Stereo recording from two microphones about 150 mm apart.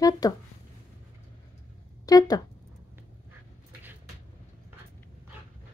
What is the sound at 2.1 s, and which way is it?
Speech, 25° left (ahead or behind).